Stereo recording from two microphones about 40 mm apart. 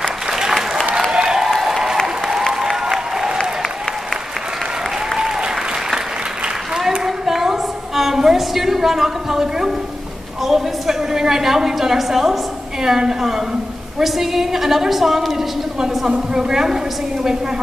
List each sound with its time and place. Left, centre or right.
0.3 s applause: centre
7.1 s a sound: centre
10.4 s a woman's voice: centre